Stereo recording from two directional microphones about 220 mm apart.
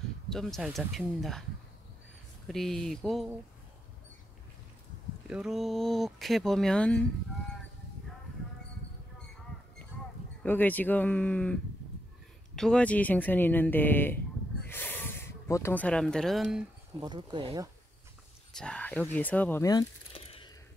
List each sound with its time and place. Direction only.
0.3 s speech: centre (ahead or behind)
2.4 s speech: centre (ahead or behind)
5.3 s speech: centre (ahead or behind)
10.4 s speech: 10° left (ahead or behind)
12.5 s speech: 5° left (ahead or behind)
14.7 s a sound: 10° left (ahead or behind)
17.0 s speech: 20° right (ahead or behind)
18.5 s speech: 5° left (ahead or behind); by 20.5 s 25° left (ahead or behind)